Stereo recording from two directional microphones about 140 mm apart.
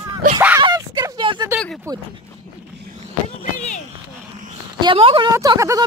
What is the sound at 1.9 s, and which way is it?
Speech, 25° right (ahead or behind).